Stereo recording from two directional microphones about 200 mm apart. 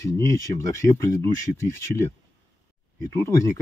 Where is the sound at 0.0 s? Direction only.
15° left (ahead or behind).